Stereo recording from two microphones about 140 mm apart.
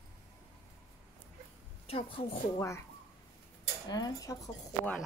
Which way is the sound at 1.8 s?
45° left (ahead or behind).